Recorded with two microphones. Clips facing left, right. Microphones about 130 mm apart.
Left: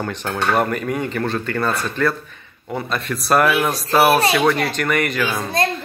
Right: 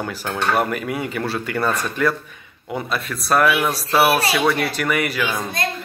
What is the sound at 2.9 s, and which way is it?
Speech, centre (ahead or behind).